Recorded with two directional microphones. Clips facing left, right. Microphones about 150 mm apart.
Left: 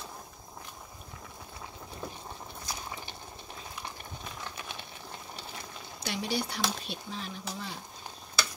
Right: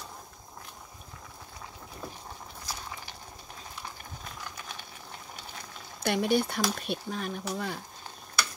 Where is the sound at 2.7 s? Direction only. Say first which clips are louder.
Even; 20° left (ahead or behind).